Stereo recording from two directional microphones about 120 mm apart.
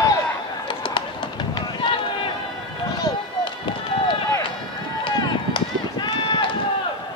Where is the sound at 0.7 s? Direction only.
45° left (ahead or behind).